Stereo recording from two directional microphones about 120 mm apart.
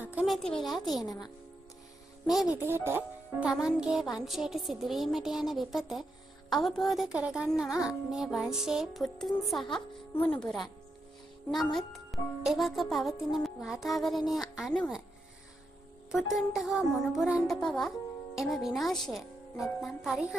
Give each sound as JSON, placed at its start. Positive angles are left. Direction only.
{"t": 0.0, "sound": "speech", "side_deg": -10}
{"t": 0.3, "sound": "music", "side_deg": 5}
{"t": 1.0, "sound": "a woman's voice", "side_deg": 30}
{"t": 2.2, "sound": "music", "side_deg": 0}
{"t": 2.5, "sound": "speech", "side_deg": -20}
{"t": 3.5, "sound": "music", "side_deg": -5}
{"t": 16.1, "sound": "music", "side_deg": -5}